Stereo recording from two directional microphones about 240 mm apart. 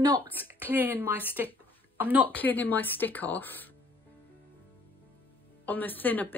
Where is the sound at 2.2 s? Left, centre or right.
Centre.